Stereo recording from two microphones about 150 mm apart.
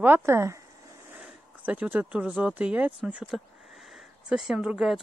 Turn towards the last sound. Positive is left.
turn(degrees=-5)  # may be behind; listen again after turning